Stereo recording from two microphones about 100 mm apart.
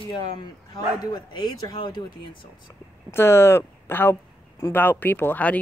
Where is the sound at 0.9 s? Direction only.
45° left (ahead or behind).